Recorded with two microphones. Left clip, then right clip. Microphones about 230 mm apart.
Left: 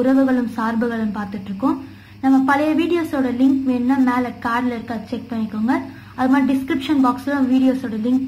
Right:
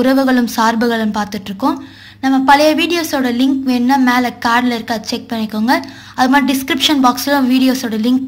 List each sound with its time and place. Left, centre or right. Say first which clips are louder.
0.0 s a woman's voice: right 4 dB; right